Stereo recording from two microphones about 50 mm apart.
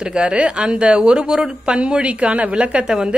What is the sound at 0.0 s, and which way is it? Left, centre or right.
Speech, centre.